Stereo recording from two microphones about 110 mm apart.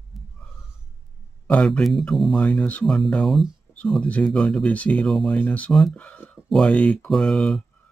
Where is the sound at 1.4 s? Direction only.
10° left (ahead or behind).